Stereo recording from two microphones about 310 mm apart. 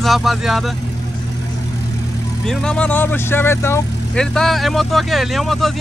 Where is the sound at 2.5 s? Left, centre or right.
Centre.